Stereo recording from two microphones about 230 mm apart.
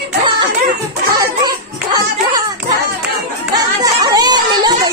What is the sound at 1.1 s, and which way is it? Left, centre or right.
Children playing, centre.